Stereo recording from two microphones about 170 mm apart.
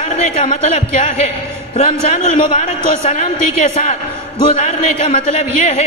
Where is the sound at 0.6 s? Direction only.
40° left (ahead or behind).